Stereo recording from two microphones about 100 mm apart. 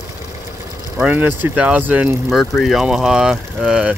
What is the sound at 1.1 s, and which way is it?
Speech, 15° right (ahead or behind).